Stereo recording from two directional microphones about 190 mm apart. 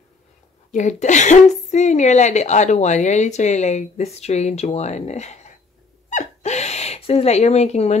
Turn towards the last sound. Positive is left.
turn(degrees=35)  # may be behind; listen again after turning